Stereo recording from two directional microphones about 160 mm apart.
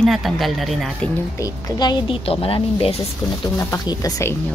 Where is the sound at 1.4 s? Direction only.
20° left (ahead or behind).